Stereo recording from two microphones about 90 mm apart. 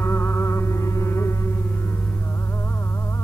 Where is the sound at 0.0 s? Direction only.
25° left (ahead or behind).